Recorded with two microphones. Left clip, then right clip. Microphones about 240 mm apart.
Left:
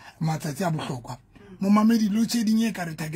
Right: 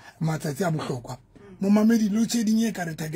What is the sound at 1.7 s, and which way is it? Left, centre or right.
Speech, centre.